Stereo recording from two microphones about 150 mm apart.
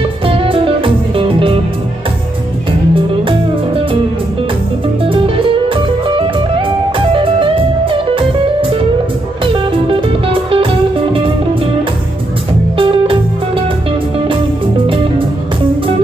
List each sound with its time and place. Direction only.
0.3 s music: 35° right (ahead or behind)
2.9 s music: 35° right (ahead or behind)
5.0 s music: 35° right (ahead or behind)
12.7 s music: 35° right (ahead or behind)